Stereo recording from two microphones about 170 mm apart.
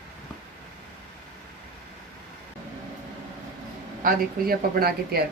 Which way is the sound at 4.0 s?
60° right (ahead or behind).